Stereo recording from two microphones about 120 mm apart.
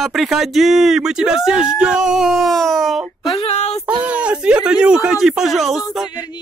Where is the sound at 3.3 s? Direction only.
60° left (ahead or behind).